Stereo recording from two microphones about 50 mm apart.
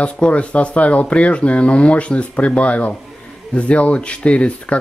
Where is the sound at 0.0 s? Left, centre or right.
Left.